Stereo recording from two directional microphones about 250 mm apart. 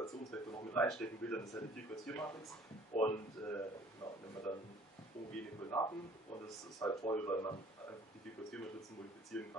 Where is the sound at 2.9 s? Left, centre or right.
Left.